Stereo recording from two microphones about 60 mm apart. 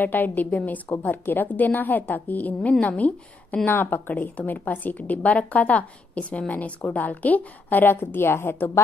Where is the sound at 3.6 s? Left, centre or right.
Left.